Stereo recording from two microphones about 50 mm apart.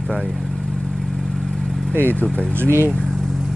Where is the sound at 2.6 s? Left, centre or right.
Right.